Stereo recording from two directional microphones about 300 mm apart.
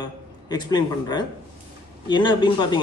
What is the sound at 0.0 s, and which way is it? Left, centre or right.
A man's voice, centre.